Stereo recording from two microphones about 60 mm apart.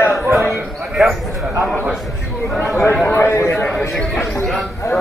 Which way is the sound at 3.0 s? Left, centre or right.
Left.